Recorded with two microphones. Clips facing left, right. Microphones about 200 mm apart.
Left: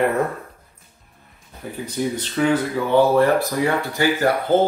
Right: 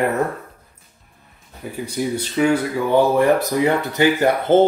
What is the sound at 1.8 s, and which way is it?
Speech, 10° right (ahead or behind).